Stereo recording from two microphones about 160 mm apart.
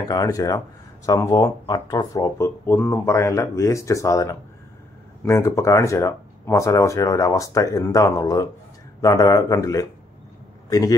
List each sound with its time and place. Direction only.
0.1 s a man's voice: 20° left (ahead or behind)